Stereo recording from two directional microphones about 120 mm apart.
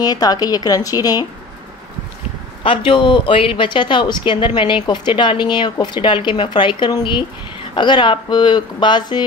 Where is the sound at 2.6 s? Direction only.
45° left (ahead or behind).